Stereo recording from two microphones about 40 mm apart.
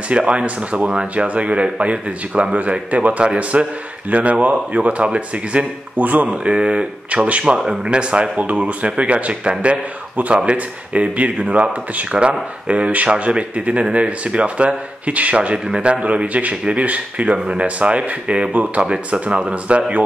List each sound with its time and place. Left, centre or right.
0.2 s speech: right
5.9 s speech: right
7.5 s speech: centre
7.8 s speech: right
15.5 s speech: right